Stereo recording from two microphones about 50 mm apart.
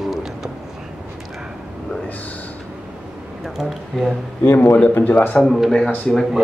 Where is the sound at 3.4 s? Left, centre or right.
Centre.